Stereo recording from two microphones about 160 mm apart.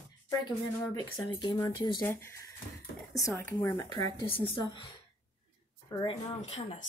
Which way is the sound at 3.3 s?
15° left (ahead or behind).